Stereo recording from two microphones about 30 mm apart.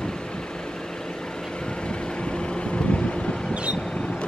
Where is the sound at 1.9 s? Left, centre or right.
Left.